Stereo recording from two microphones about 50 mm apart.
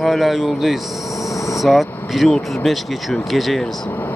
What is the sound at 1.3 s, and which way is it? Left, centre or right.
Vehicle, left.